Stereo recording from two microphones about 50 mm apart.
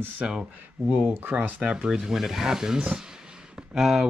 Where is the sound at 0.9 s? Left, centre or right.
Right.